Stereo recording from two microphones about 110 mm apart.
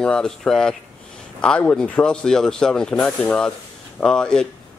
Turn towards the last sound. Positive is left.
turn(degrees=5)  # may be behind; listen again after turning